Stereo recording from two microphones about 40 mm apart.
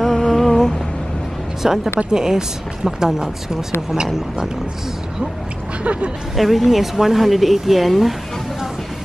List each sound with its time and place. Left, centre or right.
0.0 s humming: centre
1.6 s speech: centre
5.9 s a woman's voice: right
6.3 s speech: centre